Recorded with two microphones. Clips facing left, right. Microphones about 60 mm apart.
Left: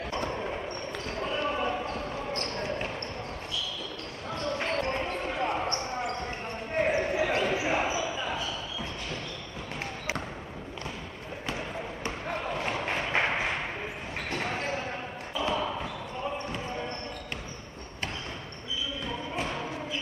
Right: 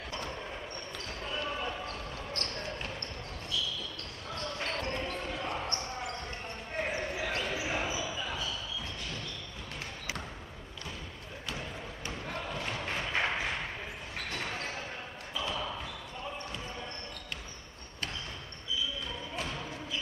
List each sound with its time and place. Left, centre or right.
1.2 s basketball bounce: left
2.3 s basketball bounce: left
4.6 s basketball bounce: left
6.8 s basketball bounce: left
11.4 s basketball bounce: left
19.3 s a sound: left